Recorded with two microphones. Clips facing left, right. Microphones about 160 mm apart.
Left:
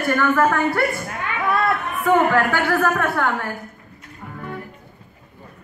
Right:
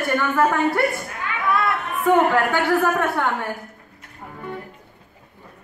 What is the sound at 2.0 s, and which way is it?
A man's voice, 20° right (ahead or behind).